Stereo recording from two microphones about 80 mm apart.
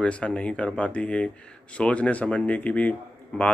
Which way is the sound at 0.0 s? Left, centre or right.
Centre.